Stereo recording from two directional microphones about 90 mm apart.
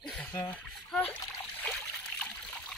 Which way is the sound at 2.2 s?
15° left (ahead or behind).